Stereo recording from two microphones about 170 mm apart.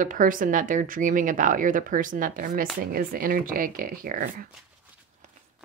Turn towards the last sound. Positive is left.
turn(degrees=-55)  # may be behind; listen again after turning